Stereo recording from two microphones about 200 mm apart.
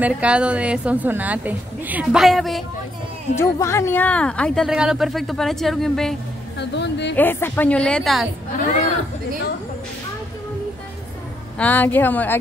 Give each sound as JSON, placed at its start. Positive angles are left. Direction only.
{"t": 0.0, "sound": "a woman's voice", "side_deg": -5}
{"t": 3.3, "sound": "speech", "side_deg": 15}
{"t": 6.6, "sound": "a woman's voice", "side_deg": 60}
{"t": 7.2, "sound": "speech", "side_deg": 10}
{"t": 11.5, "sound": "speech", "side_deg": 10}